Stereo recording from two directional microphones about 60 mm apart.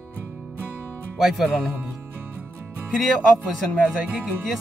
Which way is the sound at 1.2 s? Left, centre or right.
Centre.